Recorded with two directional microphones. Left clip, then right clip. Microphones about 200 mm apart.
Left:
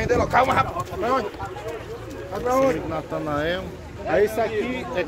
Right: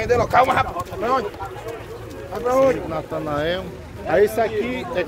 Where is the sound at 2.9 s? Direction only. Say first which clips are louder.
Right 2 dB; 15° right (ahead or behind).